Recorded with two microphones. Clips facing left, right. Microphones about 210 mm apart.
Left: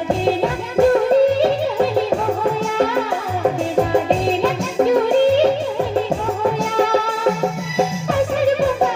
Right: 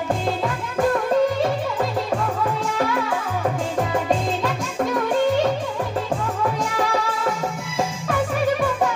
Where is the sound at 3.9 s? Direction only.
25° left (ahead or behind).